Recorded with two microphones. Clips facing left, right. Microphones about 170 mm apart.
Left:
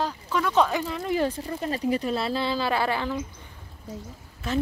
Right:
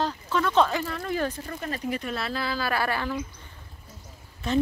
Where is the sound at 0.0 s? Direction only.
10° left (ahead or behind).